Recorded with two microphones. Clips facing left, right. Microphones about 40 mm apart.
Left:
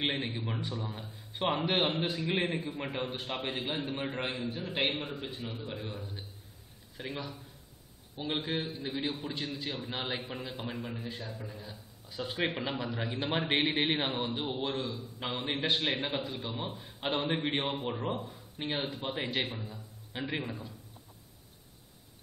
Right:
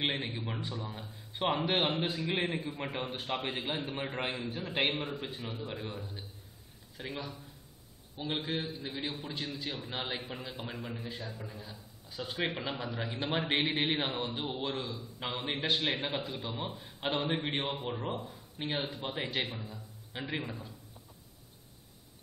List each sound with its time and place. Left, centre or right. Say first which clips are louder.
0.0 s a man's voice: left 1 dB; centre